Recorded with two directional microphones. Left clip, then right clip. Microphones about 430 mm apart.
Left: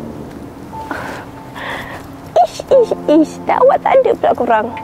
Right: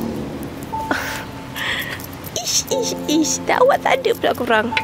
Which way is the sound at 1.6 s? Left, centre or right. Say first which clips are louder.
Right 1 dB; left.